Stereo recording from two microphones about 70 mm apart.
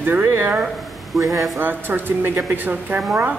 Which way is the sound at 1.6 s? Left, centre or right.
Right.